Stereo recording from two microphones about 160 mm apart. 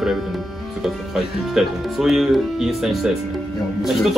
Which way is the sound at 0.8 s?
Centre (ahead or behind).